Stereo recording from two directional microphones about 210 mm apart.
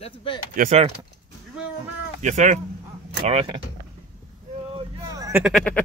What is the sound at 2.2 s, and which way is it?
Speech, 35° right (ahead or behind).